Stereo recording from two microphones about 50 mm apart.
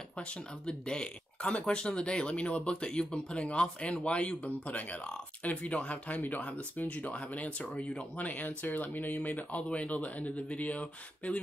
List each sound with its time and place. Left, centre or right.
0.2 s speech: left